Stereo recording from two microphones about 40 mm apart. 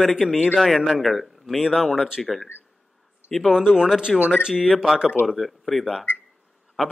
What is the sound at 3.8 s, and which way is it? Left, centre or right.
A man's voice, centre.